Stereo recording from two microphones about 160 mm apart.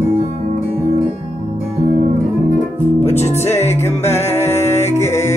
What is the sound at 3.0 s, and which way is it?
Music, 40° left (ahead or behind).